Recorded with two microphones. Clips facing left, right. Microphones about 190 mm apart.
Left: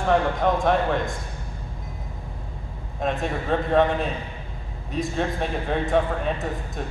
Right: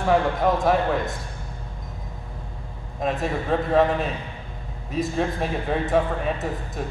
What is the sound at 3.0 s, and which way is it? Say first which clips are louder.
A man's voice: right 1 dB; centre (ahead or behind).